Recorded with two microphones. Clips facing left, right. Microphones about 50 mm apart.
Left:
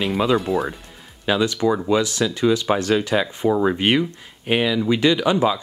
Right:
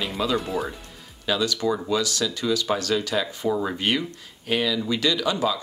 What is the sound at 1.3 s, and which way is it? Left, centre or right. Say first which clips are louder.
Speech: left 5 dB; left.